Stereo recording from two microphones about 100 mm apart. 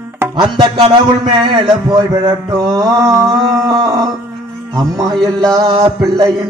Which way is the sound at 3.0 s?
35° right (ahead or behind).